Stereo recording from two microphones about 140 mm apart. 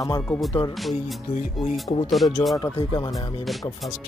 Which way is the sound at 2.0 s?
Centre (ahead or behind).